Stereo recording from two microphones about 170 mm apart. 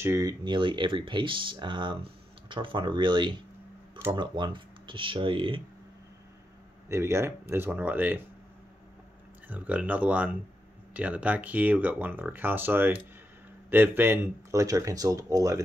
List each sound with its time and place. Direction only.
0.0 s speech: 20° right (ahead or behind)
6.9 s speech: 15° right (ahead or behind)
9.5 s speech: 10° right (ahead or behind)